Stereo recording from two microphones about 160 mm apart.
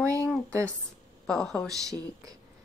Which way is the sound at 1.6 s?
20° right (ahead or behind).